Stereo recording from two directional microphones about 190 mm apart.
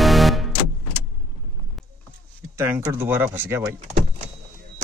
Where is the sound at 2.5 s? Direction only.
10° right (ahead or behind).